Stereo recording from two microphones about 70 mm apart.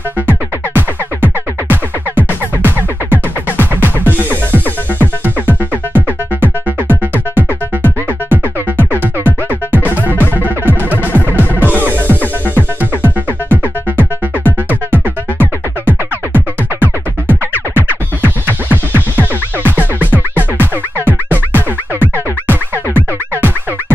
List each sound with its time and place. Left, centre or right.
0.3 s music: right